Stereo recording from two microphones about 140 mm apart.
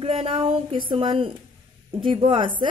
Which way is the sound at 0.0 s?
40° right (ahead or behind).